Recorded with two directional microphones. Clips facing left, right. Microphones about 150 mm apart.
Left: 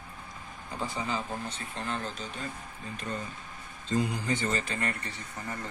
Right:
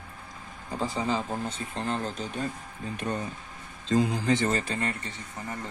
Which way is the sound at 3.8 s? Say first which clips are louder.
Right 5 dB; 90° right.